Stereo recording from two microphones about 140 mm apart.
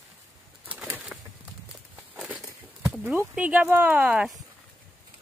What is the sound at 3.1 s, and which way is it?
Speech, 10° right (ahead or behind).